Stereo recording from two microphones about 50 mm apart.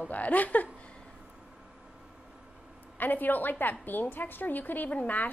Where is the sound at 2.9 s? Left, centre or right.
Left.